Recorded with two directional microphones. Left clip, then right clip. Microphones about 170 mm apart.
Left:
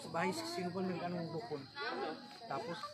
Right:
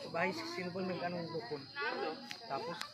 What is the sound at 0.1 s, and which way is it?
Speech, 90° left.